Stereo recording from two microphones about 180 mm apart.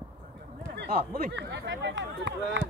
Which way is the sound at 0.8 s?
70° right (ahead or behind).